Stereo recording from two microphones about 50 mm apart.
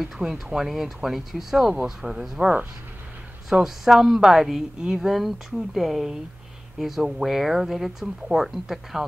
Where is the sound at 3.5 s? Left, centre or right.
Centre.